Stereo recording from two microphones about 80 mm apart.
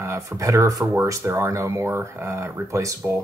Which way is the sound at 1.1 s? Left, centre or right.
Right.